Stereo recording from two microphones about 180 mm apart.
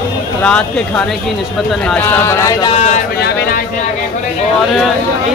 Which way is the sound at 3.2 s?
60° left (ahead or behind).